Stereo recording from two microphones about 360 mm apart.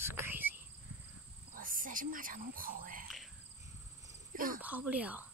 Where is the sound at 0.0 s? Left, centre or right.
Centre.